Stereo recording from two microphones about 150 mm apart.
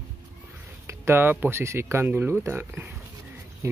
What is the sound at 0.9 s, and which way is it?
Speech, 20° right (ahead or behind).